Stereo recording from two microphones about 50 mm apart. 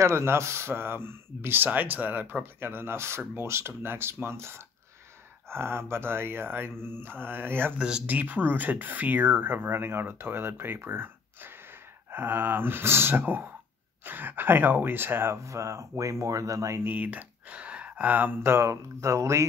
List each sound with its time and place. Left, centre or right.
0.0 s speech: right
2.4 s speech: right
8.1 s speech: right
15.3 s speech: right
16.8 s a sound: right
18.4 s speech: right
18.7 s speech: right